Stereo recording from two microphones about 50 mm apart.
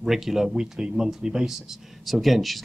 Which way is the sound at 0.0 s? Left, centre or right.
Centre.